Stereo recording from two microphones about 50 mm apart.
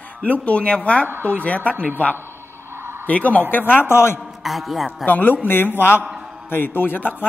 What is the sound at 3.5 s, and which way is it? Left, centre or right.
Speech, left.